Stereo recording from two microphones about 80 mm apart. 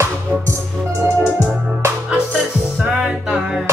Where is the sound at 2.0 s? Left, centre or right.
Centre.